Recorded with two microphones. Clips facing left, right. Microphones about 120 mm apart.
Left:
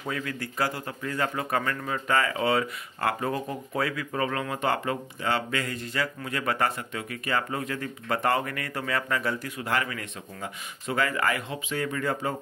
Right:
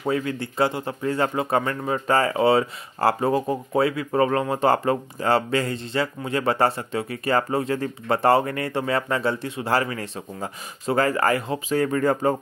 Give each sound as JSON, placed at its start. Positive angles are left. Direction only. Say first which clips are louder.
{"t": 0.0, "sound": "speech", "louder": "right 8 dB", "side_deg": -30}